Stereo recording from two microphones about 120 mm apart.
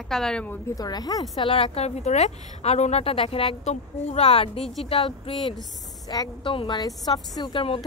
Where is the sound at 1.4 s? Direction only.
50° left (ahead or behind).